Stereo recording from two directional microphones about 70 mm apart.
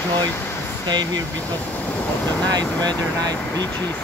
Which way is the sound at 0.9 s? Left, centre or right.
Right.